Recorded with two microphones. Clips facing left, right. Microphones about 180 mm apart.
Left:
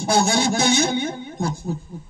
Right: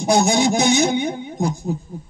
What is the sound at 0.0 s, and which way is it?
A man's voice, 20° right (ahead or behind).